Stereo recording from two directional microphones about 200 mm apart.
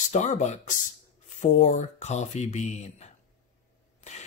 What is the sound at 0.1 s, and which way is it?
Speech, 35° left (ahead or behind).